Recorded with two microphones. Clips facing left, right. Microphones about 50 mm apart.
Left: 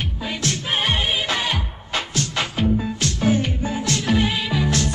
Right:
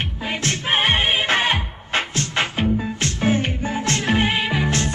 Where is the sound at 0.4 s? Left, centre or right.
Right.